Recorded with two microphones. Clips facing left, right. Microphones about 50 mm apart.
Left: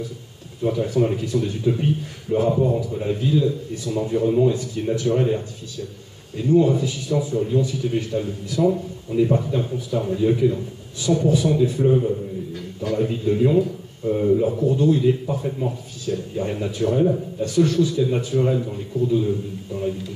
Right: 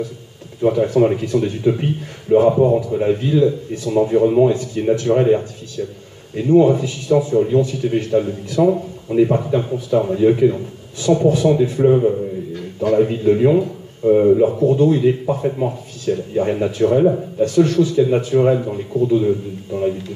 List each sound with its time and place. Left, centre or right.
0.6 s a man's voice: right
11.2 s speech: centre
11.5 s a man's voice: right